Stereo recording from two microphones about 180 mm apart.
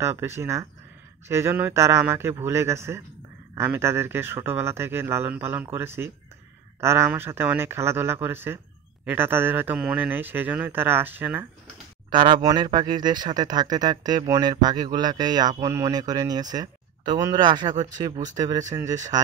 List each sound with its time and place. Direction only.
0.0 s speech: 15° right (ahead or behind)
12.1 s speech: 25° right (ahead or behind)